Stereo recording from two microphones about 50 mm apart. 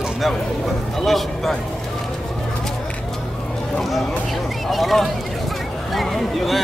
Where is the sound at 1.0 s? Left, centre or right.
Centre.